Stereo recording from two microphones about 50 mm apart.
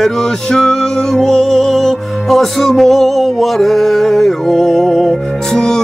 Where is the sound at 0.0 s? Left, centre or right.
Centre.